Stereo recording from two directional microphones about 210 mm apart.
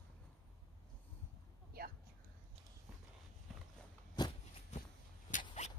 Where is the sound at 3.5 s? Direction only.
Centre (ahead or behind).